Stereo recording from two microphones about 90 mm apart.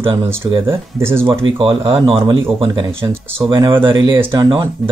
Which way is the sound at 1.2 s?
65° right (ahead or behind).